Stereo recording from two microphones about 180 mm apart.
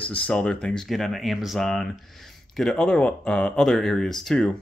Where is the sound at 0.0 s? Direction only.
10° left (ahead or behind).